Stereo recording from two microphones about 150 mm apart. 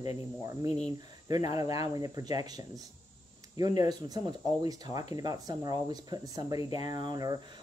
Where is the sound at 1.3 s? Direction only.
25° right (ahead or behind).